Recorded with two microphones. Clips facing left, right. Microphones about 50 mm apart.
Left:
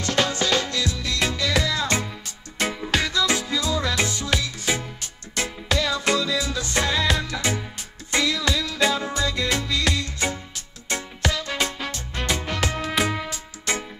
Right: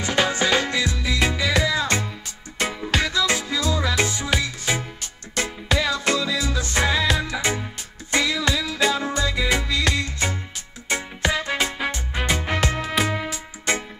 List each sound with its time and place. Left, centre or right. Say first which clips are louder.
0.0 s music: right 2 dB; centre
3.1 s music: even; centre